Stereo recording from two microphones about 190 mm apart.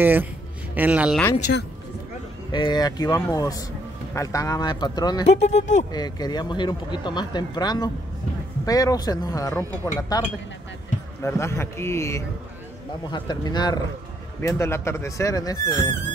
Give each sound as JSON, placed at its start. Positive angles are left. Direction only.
{"t": 0.0, "sound": "speech", "side_deg": -10}
{"t": 2.5, "sound": "speech", "side_deg": 25}
{"t": 5.4, "sound": "speech", "side_deg": 35}
{"t": 5.9, "sound": "speech", "side_deg": 20}
{"t": 11.2, "sound": "speech", "side_deg": 15}